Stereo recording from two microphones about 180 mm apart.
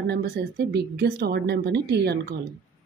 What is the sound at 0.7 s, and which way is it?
Speech, 65° right (ahead or behind).